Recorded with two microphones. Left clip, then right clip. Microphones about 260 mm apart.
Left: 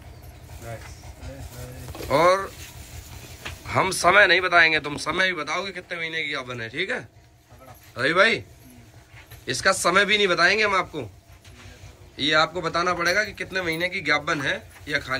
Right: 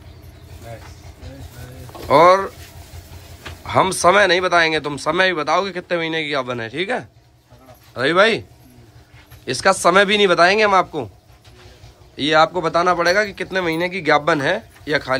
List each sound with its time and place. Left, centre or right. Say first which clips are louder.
2.0 s speech: right 8 dB; centre
3.6 s speech: right 6 dB; centre
9.5 s speech: right 6 dB; centre
12.2 s speech: right 6 dB; centre